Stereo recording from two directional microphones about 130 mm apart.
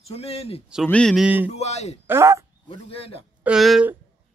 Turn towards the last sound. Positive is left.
turn(degrees=-5)  # may be behind; listen again after turning